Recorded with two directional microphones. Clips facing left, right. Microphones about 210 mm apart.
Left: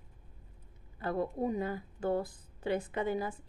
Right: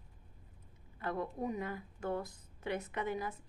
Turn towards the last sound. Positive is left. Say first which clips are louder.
# left 5 dB
turn(degrees=30)  # may be behind; listen again after turning